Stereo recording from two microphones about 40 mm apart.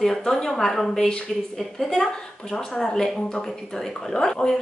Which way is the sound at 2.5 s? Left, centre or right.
Centre.